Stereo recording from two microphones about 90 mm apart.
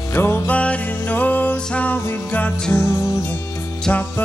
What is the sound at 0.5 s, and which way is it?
Music, 15° left (ahead or behind).